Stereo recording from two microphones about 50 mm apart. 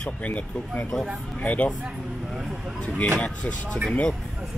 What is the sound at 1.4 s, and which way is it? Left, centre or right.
Speech, left.